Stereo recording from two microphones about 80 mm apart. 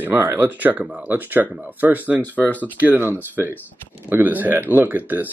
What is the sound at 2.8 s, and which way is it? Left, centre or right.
Speech, right.